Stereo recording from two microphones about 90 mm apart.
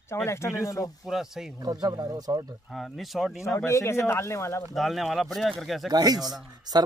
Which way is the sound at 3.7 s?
30° left (ahead or behind).